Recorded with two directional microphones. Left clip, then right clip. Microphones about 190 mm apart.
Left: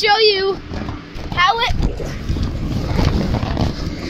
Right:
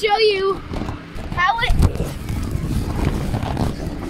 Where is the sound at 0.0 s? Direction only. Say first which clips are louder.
Left 3 dB; 30° left (ahead or behind).